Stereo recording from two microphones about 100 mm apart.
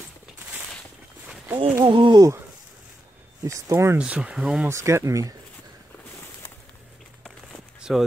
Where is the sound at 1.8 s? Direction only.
60° right (ahead or behind).